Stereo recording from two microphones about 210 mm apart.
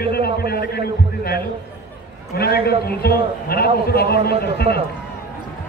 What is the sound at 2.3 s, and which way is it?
A man's voice, 50° left (ahead or behind).